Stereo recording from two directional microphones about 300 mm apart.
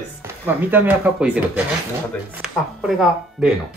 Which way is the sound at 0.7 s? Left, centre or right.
Centre.